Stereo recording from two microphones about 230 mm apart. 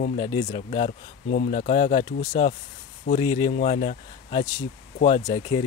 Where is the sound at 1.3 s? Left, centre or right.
Left.